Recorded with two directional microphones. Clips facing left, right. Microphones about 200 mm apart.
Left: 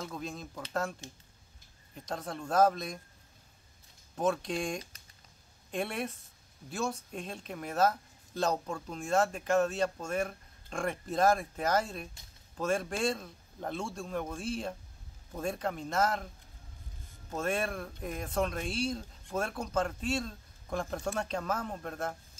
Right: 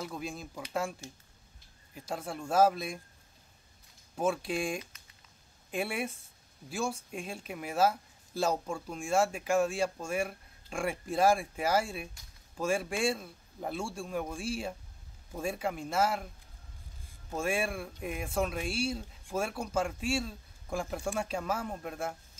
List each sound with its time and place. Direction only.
0.0 s speech: 10° right (ahead or behind)
1.0 s speech: 20° left (ahead or behind)
2.0 s speech: 5° right (ahead or behind)
4.2 s speech: 5° right (ahead or behind)
17.3 s speech: 10° right (ahead or behind)